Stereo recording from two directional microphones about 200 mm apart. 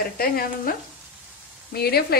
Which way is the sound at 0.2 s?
45° left (ahead or behind).